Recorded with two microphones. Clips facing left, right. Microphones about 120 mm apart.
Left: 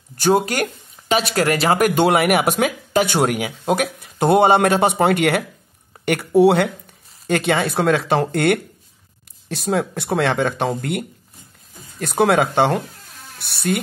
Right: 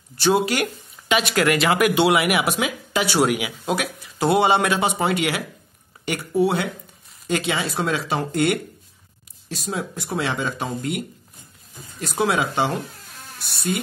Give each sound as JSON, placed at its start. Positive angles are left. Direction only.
{"t": 0.2, "sound": "speech", "side_deg": 45}
{"t": 7.2, "sound": "speech", "side_deg": 55}